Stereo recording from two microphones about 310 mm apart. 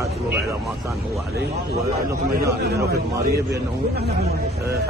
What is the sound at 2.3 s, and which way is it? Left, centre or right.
Speech, right.